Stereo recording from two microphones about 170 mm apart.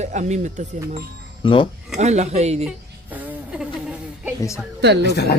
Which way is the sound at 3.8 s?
5° right (ahead or behind).